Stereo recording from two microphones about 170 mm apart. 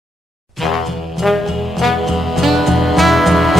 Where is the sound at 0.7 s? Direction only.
Centre (ahead or behind).